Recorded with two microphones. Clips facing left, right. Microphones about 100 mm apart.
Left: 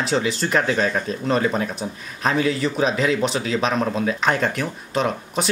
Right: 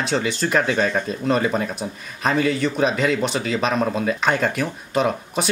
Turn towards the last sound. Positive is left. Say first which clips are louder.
# right 1 dB
turn(degrees=0)  # may be behind; listen again after turning